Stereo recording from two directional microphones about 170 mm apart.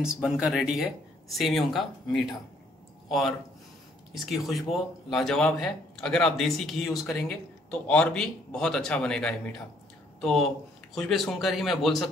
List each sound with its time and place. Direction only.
0.0 s speech: 5° right (ahead or behind)